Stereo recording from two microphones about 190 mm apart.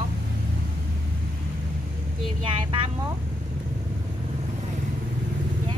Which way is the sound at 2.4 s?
25° right (ahead or behind).